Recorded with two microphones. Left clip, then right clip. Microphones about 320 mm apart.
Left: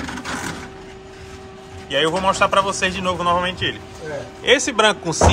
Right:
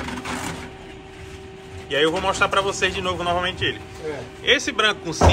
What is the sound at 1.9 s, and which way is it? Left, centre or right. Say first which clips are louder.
A man's voice: left 2 dB; centre.